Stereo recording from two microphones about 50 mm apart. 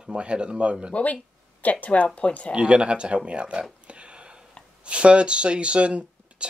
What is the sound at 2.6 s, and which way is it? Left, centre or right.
Speech, right.